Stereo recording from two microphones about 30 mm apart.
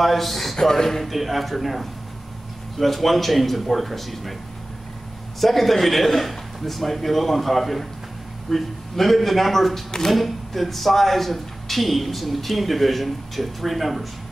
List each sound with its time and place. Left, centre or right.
0.0 s speech: centre
0.6 s speech: centre
1.0 s speech: centre
5.4 s speech: centre
9.8 s speech: centre
10.1 s speech: centre